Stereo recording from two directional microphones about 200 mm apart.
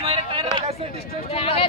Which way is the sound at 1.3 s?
30° left (ahead or behind).